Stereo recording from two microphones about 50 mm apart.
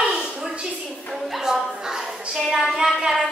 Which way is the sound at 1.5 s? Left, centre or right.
Centre.